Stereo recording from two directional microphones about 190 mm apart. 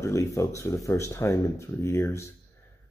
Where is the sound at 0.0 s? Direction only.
15° left (ahead or behind).